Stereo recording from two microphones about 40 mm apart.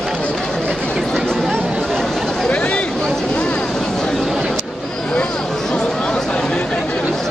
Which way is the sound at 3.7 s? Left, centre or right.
Centre.